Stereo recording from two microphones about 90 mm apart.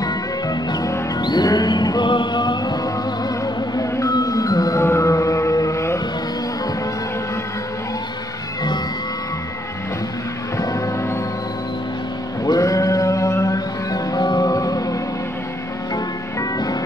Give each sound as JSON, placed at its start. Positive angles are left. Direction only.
{"t": 0.0, "sound": "music", "side_deg": 45}
{"t": 4.1, "sound": "music", "side_deg": 40}
{"t": 10.6, "sound": "music", "side_deg": 40}
{"t": 12.4, "sound": "music", "side_deg": 40}